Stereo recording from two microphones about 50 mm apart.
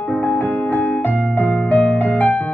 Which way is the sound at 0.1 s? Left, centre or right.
Left.